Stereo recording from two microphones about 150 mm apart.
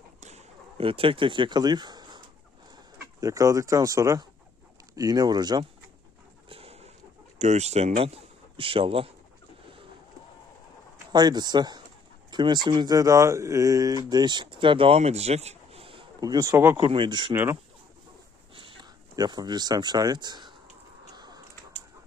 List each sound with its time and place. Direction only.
0.2 s a sound: 50° right (ahead or behind); by 2.2 s 30° right (ahead or behind)
2.7 s speech: 25° right (ahead or behind)
6.5 s chicken: 40° right (ahead or behind)
7.3 s speech: 50° right (ahead or behind)
11.1 s speech: 30° right (ahead or behind)
16.2 s speech: 25° right (ahead or behind)
16.9 s speech: 30° right (ahead or behind)
17.3 s speech: 15° right (ahead or behind)
18.5 s speech: 30° right (ahead or behind)
21.1 s a sound: 25° right (ahead or behind)